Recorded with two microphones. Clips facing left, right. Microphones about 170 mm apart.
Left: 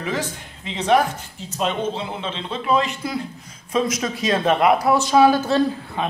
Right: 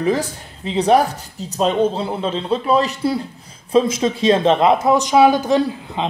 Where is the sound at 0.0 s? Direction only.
35° right (ahead or behind).